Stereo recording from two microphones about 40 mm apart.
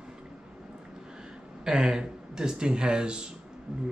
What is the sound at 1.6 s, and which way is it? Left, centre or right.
A man's voice, centre.